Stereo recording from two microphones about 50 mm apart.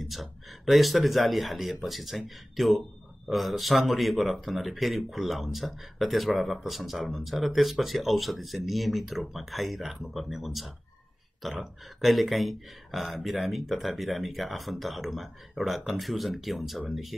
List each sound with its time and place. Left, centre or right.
0.1 s speech: centre